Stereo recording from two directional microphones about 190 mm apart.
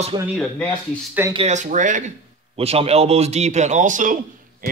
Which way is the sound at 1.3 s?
35° right (ahead or behind).